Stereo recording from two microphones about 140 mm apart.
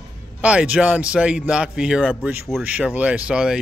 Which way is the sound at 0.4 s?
10° right (ahead or behind).